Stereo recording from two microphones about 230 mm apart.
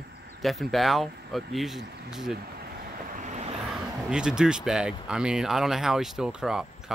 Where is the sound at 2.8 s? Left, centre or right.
Right.